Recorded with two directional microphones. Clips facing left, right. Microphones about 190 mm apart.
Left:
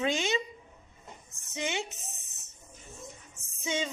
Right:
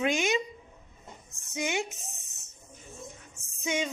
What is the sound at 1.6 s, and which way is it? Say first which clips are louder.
Speech: right 3 dB; 10° right (ahead or behind).